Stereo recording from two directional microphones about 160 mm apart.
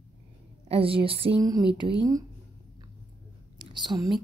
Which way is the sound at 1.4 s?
25° right (ahead or behind).